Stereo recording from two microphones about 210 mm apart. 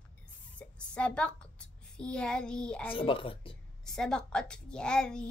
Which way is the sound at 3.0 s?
25° left (ahead or behind).